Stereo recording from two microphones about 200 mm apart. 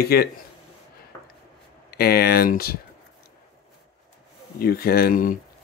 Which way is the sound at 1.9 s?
50° left (ahead or behind).